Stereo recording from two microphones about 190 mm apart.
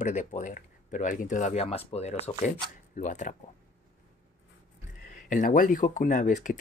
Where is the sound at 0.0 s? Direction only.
40° left (ahead or behind).